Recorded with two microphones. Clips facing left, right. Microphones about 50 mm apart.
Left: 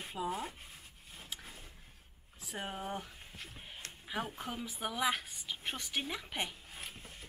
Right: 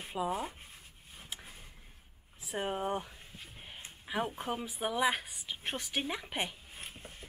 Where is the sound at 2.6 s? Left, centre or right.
Centre.